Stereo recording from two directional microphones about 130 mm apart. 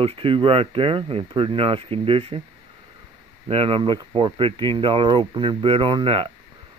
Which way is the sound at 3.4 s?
45° right (ahead or behind).